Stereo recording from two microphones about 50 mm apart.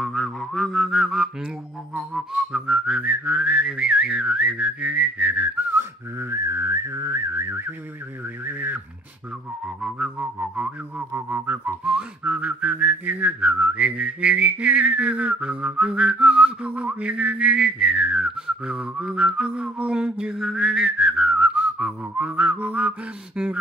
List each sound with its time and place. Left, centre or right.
0.0 s music: centre
0.7 s music: centre
2.0 s whistling: centre
3.0 s whistling: right
6.3 s whistling: right
8.5 s a sound: right
9.8 s whistling: centre
10.1 s whistling: right
11.0 s whistling: right
11.4 s a sound: right
11.8 s whistling: right
22.7 s a sound: right
23.3 s whistling: centre